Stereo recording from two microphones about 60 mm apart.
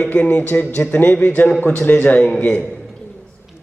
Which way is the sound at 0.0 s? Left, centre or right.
Left.